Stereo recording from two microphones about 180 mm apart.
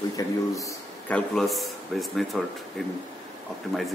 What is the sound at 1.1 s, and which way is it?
Speech, centre (ahead or behind).